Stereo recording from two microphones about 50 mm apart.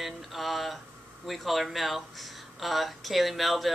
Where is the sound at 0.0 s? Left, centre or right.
Centre.